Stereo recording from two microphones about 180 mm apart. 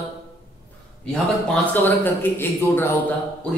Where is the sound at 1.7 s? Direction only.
10° left (ahead or behind).